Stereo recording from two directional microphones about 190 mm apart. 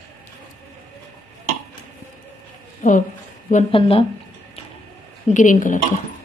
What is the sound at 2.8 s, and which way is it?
Speech, 40° left (ahead or behind).